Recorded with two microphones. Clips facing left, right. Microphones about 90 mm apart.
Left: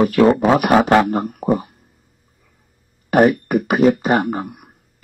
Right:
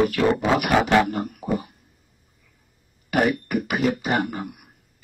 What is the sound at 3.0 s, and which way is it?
Speech, 40° left (ahead or behind).